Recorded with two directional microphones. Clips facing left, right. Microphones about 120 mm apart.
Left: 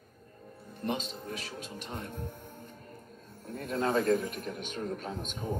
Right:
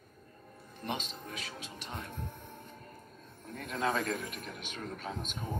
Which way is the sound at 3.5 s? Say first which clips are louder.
Left 3 dB; 30° left (ahead or behind).